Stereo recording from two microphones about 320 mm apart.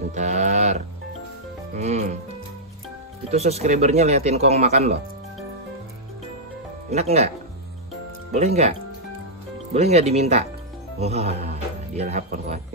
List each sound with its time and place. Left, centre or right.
0.1 s livestock: right
1.8 s speech: right
3.3 s speech: centre
6.9 s speech: centre
8.3 s speech: right
9.8 s speech: centre